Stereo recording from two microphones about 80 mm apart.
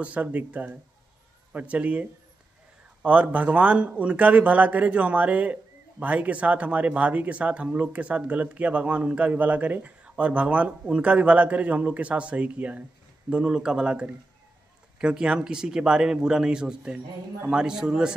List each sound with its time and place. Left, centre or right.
0.0 s speech: centre